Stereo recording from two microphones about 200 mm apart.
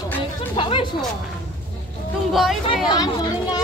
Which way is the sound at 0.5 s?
25° left (ahead or behind).